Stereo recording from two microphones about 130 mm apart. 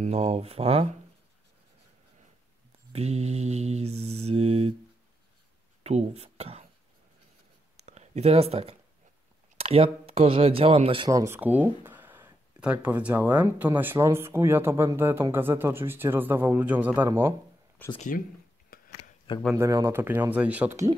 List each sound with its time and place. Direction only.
0.0 s speech: 60° right (ahead or behind)
2.9 s mantra: 55° right (ahead or behind)
5.9 s speech: 55° right (ahead or behind)
7.8 s a sound: 60° right (ahead or behind)
9.6 s speech: 50° right (ahead or behind)
11.1 s speech: 20° right (ahead or behind)
17.8 s speech: 15° left (ahead or behind)
18.7 s a sound: 90° left
19.5 s speech: 20° right (ahead or behind)